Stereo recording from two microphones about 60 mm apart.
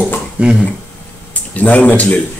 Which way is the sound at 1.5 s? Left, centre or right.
Left.